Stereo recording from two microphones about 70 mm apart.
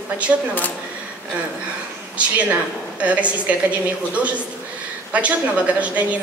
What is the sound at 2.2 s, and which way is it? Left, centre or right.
A woman's voice, centre.